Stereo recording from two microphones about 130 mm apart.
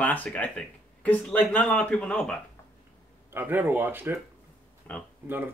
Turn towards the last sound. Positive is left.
turn(degrees=-15)  # may be behind; listen again after turning